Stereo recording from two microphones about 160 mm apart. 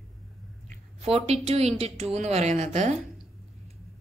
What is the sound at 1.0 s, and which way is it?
A woman's voice, 40° right (ahead or behind).